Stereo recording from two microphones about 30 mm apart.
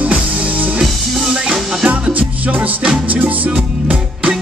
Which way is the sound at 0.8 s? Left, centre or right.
Centre.